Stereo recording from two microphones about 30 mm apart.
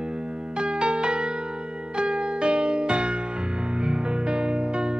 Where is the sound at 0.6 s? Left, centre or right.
Right.